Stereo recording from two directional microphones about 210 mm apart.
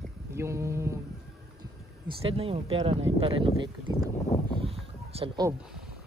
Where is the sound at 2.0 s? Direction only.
30° right (ahead or behind).